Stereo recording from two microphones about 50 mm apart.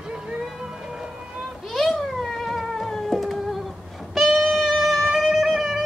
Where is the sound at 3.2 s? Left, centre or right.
Centre.